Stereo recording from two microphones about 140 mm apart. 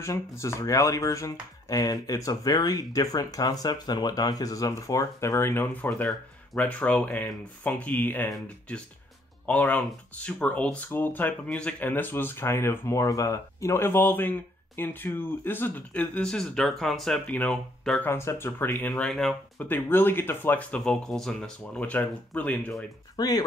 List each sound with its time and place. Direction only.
0.0 s speech: 20° left (ahead or behind)
9.5 s speech: 10° left (ahead or behind)
18.0 s speech: 15° left (ahead or behind)
23.1 s speech: 25° left (ahead or behind)